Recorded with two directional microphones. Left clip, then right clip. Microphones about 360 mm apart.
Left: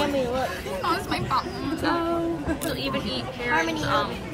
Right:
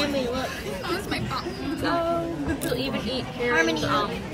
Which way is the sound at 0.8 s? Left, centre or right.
Centre.